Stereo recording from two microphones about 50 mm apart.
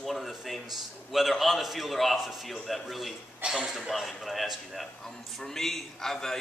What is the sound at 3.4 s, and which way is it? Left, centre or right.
Speech, centre.